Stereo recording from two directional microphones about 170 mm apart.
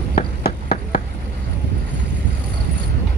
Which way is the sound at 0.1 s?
60° left (ahead or behind).